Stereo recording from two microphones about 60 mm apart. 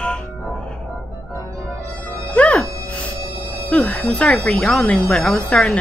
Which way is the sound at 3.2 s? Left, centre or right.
Right.